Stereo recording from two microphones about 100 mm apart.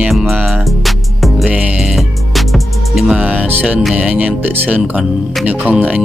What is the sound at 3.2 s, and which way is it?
Speech, 15° right (ahead or behind).